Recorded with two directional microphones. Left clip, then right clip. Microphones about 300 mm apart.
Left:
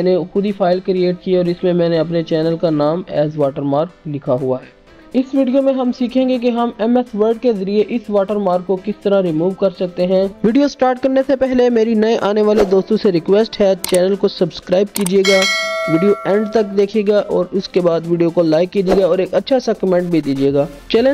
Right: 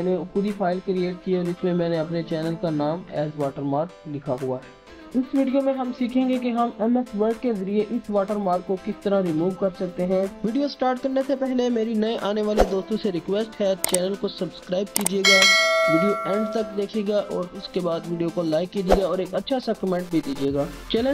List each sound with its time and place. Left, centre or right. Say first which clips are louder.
0.0 s speech: left 9 dB; left
5.4 s speech: left 8 dB; left
15.2 s speech: right 2 dB; centre
16.5 s speech: left 11 dB; left